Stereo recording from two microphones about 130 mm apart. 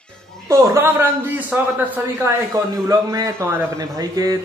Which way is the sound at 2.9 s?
25° right (ahead or behind).